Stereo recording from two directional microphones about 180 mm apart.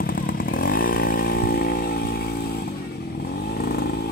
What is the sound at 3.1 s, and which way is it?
Vehicle, 65° left (ahead or behind).